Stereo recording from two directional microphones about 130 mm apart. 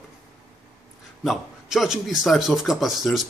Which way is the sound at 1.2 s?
Centre (ahead or behind).